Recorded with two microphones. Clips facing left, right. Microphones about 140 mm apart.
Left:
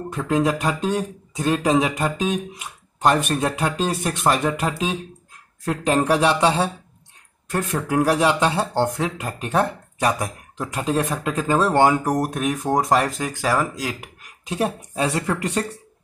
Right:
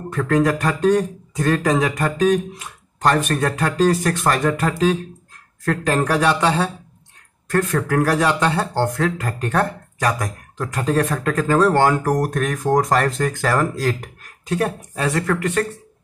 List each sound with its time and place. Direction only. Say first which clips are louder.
0.1 s speech: right 3 dB; 20° left (ahead or behind)